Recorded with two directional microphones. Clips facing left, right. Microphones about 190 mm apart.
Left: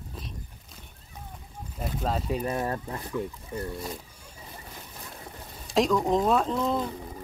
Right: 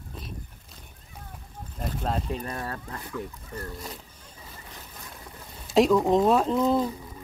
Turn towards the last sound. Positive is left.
turn(degrees=0)  # may be behind; listen again after turning